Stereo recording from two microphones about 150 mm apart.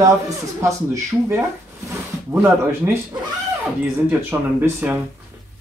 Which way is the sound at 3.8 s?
15° right (ahead or behind).